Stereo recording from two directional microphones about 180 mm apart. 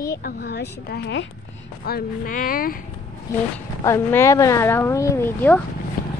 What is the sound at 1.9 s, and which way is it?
Speech, 55° left (ahead or behind).